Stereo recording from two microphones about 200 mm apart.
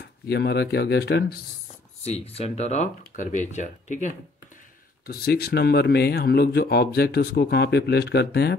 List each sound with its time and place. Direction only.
0.0 s speech: 55° left (ahead or behind)
2.0 s speech: 30° left (ahead or behind)
5.0 s speech: 50° left (ahead or behind)